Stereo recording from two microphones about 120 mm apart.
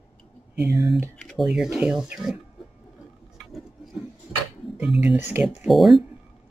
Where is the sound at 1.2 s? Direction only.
Centre (ahead or behind).